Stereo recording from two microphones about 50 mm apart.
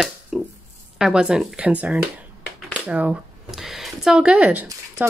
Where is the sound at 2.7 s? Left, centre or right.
Right.